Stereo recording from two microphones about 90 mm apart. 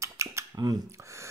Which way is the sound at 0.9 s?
35° right (ahead or behind).